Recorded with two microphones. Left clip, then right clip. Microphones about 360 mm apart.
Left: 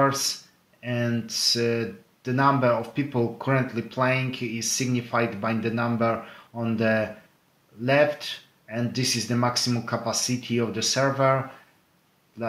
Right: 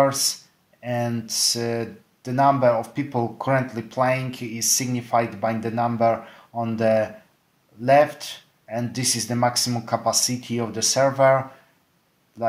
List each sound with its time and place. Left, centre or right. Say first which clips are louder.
0.0 s speech: right 3 dB; centre